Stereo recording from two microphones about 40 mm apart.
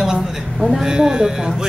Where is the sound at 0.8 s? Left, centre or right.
Centre.